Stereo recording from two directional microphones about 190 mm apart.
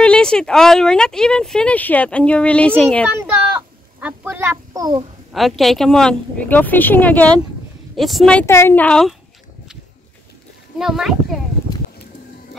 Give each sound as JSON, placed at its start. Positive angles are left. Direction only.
{"t": 0.0, "sound": "speech", "side_deg": 5}
{"t": 3.1, "sound": "a child's voice", "side_deg": -5}
{"t": 5.3, "sound": "a woman's voice", "side_deg": 0}
{"t": 10.8, "sound": "speech", "side_deg": 0}